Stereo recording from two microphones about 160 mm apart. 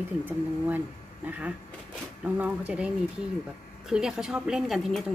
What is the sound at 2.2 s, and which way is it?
Speech, 10° right (ahead or behind).